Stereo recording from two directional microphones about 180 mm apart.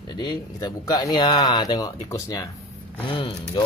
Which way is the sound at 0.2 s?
25° left (ahead or behind).